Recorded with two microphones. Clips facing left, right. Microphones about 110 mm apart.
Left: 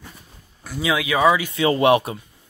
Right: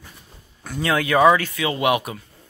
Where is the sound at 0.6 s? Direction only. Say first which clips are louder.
Right 1 dB; 5° left (ahead or behind).